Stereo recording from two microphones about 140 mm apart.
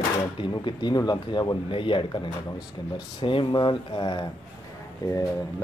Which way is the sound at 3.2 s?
35° left (ahead or behind).